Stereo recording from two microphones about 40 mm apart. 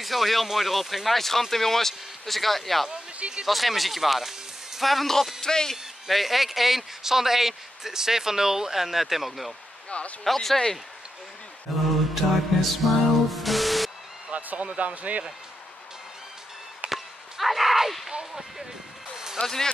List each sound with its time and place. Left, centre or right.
0.0 s speech: centre
2.9 s speech: right
3.4 s speech: centre
5.4 s speech: centre
6.0 s speech: centre
9.8 s speech: left
10.2 s speech: centre
11.7 s speech: centre
12.2 s music: centre
14.3 s speech: right
16.9 s chop: centre
19.4 s speech: centre